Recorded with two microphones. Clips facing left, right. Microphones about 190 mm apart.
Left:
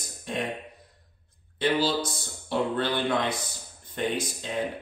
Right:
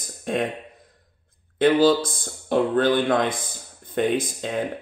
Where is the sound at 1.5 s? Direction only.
50° right (ahead or behind).